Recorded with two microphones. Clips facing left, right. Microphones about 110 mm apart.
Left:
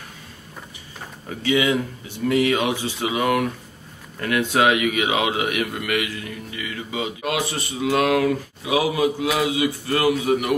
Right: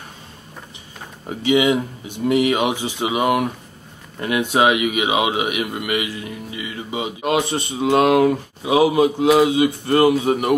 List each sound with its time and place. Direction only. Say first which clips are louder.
1.3 s a man's voice: right 4 dB; 20° right (ahead or behind)